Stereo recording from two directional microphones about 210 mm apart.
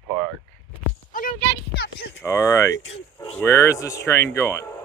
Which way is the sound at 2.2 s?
15° left (ahead or behind).